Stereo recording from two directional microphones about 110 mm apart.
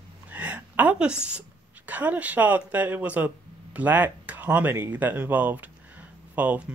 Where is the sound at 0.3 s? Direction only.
15° right (ahead or behind).